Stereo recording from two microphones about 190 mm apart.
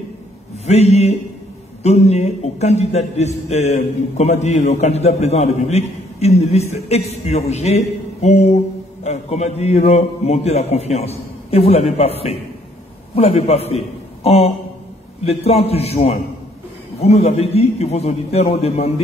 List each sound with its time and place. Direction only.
0.7 s a man's voice: 35° left (ahead or behind)